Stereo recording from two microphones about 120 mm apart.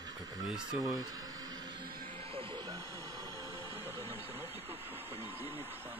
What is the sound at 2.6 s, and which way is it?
Music, 30° right (ahead or behind).